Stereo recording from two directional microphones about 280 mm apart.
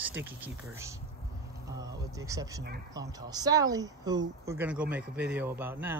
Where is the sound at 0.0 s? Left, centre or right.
Centre.